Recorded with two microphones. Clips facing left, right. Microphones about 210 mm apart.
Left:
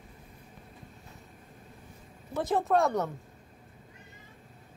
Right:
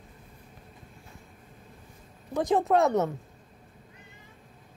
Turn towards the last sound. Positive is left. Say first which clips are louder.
# right 3 dB
turn(degrees=-20)  # may be behind; listen again after turning